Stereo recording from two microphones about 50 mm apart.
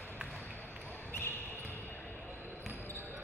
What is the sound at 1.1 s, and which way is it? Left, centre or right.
Basketball bounce, left.